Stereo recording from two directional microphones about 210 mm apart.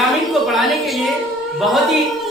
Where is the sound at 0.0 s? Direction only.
Centre (ahead or behind).